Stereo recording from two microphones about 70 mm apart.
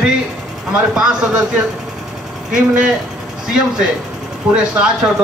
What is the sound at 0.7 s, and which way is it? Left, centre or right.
Speech, centre.